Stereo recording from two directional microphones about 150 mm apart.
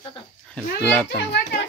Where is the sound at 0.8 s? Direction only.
10° left (ahead or behind).